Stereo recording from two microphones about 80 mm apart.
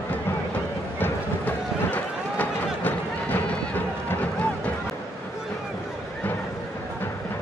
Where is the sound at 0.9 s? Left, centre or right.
Left.